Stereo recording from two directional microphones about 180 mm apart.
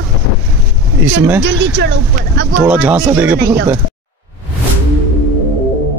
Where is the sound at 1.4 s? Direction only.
75° right (ahead or behind).